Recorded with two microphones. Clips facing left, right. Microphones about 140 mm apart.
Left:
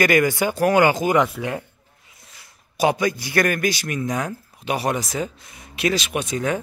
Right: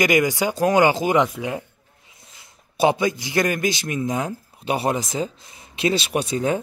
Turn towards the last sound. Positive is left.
turn(degrees=-30)  # may be behind; listen again after turning